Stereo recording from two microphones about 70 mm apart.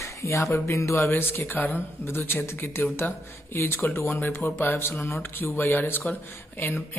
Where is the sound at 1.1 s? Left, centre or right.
Left.